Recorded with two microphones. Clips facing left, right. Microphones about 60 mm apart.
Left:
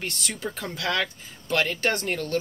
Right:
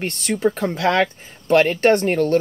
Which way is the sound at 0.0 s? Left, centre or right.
Right.